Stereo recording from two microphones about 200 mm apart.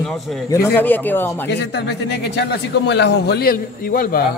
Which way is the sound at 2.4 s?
60° left (ahead or behind).